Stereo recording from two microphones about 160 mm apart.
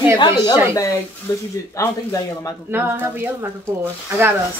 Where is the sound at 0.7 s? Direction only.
20° left (ahead or behind).